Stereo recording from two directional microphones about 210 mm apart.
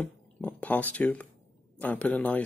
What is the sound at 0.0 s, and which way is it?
Speech, 5° left (ahead or behind).